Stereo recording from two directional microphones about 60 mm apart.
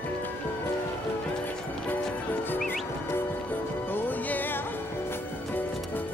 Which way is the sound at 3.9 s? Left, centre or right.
Left.